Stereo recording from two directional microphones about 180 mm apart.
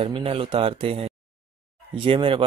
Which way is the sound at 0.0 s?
30° right (ahead or behind).